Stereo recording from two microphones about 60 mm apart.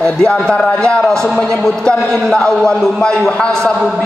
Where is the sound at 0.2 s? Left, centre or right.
Centre.